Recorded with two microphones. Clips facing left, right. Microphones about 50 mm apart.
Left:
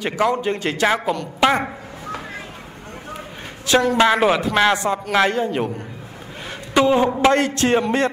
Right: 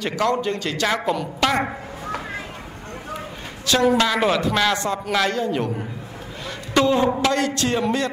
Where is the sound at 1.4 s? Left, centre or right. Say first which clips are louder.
Left 4 dB; centre.